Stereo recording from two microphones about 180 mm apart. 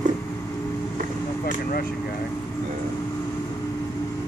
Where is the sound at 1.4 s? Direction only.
55° left (ahead or behind).